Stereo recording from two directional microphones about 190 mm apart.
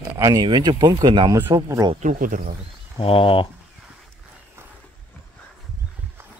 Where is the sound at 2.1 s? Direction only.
45° right (ahead or behind).